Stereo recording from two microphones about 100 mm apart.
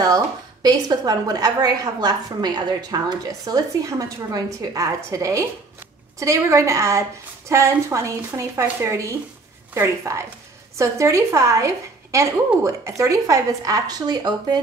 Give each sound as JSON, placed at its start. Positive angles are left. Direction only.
{"t": 0.0, "sound": "a woman's voice", "side_deg": -40}